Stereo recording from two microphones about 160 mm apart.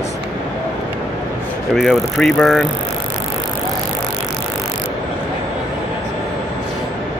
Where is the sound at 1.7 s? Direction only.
Centre (ahead or behind).